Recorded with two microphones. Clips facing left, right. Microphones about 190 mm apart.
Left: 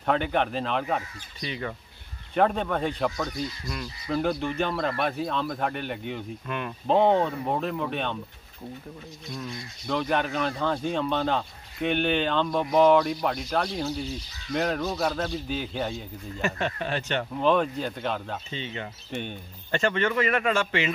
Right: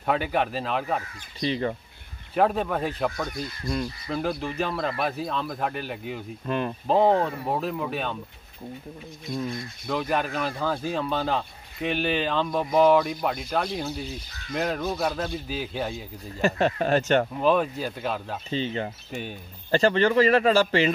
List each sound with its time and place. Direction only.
0.0 s speech: 5° right (ahead or behind)
1.4 s a man's voice: 30° right (ahead or behind)
2.3 s speech: 5° right (ahead or behind)
6.4 s a man's voice: 35° right (ahead or behind)
6.9 s speech: centre (ahead or behind)
9.8 s speech: 5° right (ahead or behind)
16.3 s a man's voice: 35° right (ahead or behind)
17.4 s speech: 5° right (ahead or behind)
18.5 s a man's voice: 35° right (ahead or behind)